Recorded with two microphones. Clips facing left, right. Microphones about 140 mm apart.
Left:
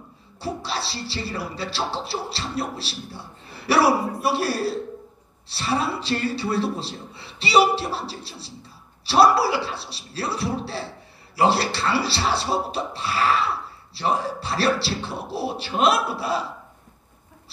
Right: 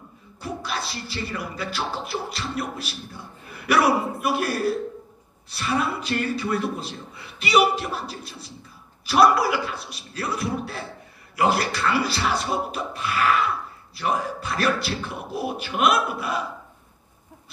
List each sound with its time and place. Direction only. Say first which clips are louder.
0.4 s speech: left 2 dB; 30° left (ahead or behind)